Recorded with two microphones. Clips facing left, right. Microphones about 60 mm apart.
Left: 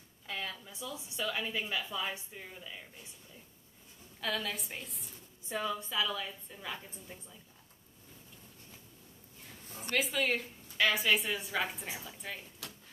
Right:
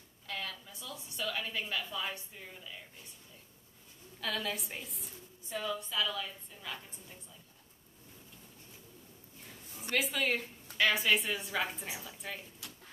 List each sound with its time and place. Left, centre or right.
0.3 s a sound: centre
1.2 s a woman's voice: centre
4.2 s a woman's voice: centre
5.5 s a woman's voice: centre
9.8 s a woman's voice: centre